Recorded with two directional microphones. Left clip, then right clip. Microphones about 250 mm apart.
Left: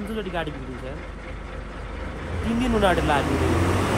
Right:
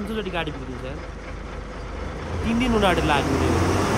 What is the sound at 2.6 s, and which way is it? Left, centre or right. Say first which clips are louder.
Speech: right 1 dB; centre.